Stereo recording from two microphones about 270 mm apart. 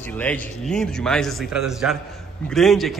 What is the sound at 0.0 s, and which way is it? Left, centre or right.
A man's voice, centre.